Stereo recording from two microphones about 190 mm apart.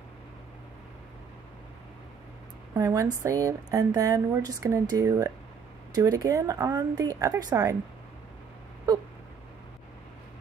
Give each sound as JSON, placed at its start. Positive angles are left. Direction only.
{"t": 2.7, "sound": "speech", "side_deg": -15}